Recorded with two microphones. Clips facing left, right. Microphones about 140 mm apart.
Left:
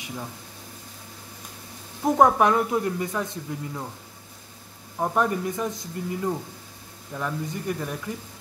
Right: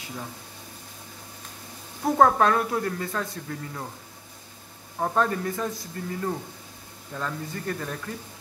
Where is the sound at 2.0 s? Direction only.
15° left (ahead or behind).